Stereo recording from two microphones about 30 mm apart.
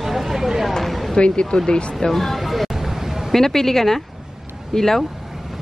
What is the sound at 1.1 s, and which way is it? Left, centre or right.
Speech, left.